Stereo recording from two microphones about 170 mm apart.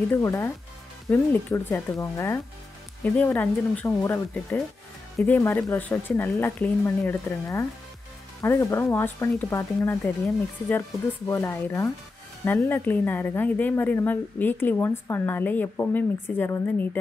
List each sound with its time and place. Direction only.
0.1 s speech: 15° left (ahead or behind)
11.2 s speech: 15° left (ahead or behind)